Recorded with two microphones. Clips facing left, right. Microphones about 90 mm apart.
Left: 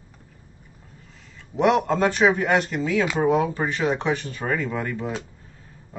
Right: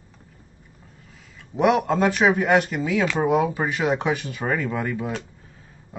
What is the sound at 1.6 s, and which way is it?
Speech, centre (ahead or behind).